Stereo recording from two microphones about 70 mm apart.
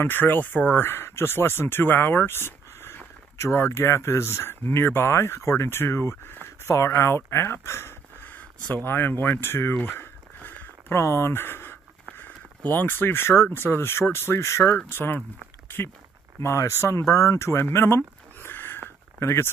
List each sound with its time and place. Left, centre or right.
0.0 s speech: left
9.8 s a sound: left
12.2 s speech: left
16.3 s speech: left